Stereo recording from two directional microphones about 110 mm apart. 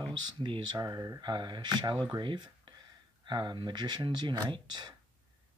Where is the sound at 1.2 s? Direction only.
45° right (ahead or behind).